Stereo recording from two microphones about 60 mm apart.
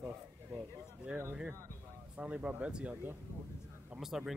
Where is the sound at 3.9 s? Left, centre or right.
Centre.